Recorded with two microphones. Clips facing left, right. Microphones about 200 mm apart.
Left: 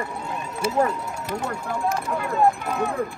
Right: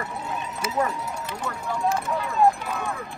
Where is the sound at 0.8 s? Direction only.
45° left (ahead or behind).